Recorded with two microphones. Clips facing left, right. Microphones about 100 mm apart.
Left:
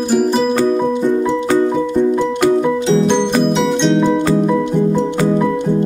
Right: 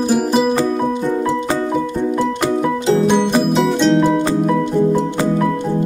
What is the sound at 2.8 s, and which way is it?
Music, 5° right (ahead or behind).